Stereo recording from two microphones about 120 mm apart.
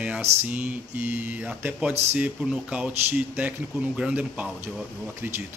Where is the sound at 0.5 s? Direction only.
10° right (ahead or behind).